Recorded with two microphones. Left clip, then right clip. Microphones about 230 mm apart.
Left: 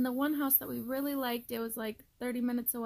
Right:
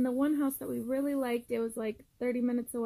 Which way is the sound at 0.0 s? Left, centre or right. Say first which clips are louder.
Right 2 dB; centre.